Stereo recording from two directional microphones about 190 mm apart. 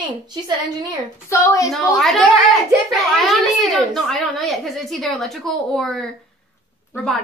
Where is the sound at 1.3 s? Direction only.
15° left (ahead or behind).